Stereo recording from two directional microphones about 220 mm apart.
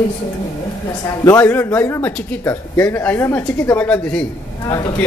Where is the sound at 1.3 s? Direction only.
10° left (ahead or behind).